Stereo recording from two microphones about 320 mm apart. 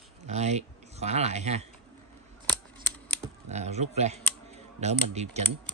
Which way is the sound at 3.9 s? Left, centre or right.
Centre.